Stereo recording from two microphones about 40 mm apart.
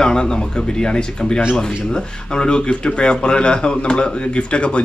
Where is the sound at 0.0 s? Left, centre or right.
Centre.